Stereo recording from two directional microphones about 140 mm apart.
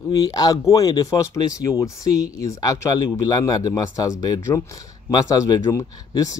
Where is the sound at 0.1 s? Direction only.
25° left (ahead or behind).